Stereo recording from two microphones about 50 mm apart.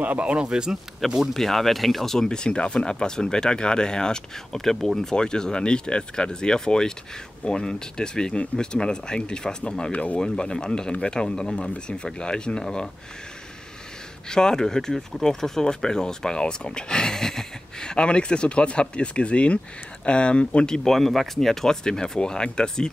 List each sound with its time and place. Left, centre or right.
0.0 s speech: right
0.5 s speech: centre
1.3 s speech: centre
14.3 s speech: centre